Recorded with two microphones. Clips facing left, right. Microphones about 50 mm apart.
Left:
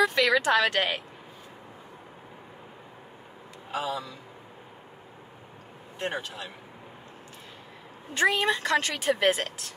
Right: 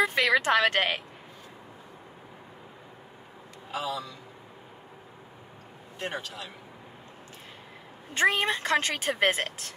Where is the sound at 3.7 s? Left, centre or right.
Left.